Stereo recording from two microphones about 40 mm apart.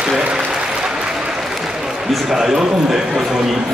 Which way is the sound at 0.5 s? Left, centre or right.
Centre.